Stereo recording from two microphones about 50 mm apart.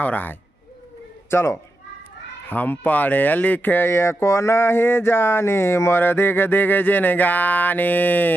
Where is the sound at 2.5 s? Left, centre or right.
Left.